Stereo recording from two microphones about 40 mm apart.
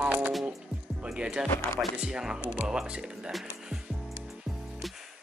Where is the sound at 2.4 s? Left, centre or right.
Right.